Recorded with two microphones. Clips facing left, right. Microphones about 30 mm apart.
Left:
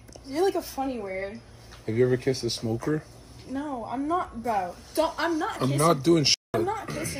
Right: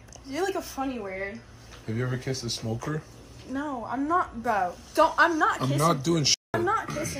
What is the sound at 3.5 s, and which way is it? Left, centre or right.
Speech, right.